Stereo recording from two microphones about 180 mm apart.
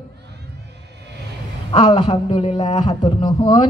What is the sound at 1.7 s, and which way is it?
A woman's voice, 25° left (ahead or behind).